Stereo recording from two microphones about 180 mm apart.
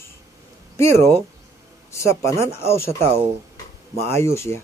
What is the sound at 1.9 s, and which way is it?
Speech, 15° left (ahead or behind).